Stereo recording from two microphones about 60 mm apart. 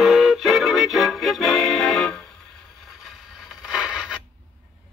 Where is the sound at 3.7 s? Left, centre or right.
Centre.